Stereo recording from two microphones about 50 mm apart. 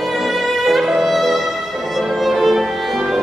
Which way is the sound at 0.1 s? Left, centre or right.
Centre.